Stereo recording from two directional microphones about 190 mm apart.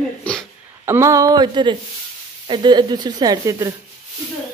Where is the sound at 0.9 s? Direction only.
15° right (ahead or behind).